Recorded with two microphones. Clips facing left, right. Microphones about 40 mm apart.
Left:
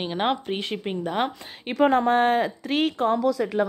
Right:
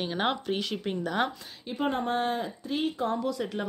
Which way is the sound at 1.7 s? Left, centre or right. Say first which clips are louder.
Left 11 dB; left.